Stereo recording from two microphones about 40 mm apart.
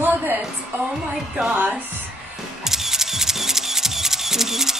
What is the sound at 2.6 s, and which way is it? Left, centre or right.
Camera, centre.